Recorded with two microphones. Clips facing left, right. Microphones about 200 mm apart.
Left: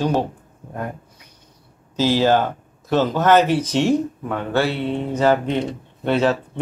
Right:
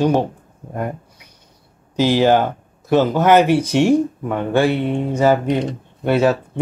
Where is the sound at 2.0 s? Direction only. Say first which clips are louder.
Right 3 dB; 15° right (ahead or behind).